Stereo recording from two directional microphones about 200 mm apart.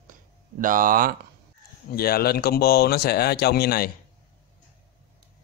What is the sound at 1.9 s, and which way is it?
Speech, 50° left (ahead or behind).